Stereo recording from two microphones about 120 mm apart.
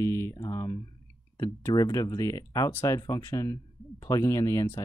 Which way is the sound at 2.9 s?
30° left (ahead or behind).